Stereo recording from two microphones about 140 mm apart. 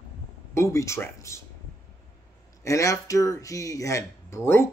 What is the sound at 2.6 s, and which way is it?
Speech, 20° left (ahead or behind).